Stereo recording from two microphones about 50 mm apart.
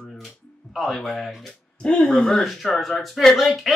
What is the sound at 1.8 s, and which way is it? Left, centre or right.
Speech, centre.